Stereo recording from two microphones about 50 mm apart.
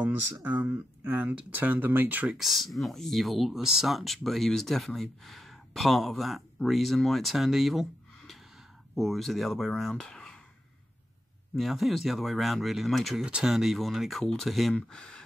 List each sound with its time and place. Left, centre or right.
0.0 s speech: right
0.7 s speech: right
2.3 s speech: centre
8.9 s speech: centre
11.7 s speech: centre
14.9 s speech: centre